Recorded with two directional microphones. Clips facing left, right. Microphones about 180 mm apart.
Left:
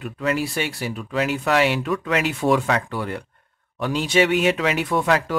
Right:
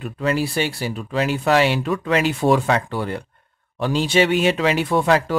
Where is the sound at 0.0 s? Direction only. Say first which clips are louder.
Right 2 dB; 30° right (ahead or behind).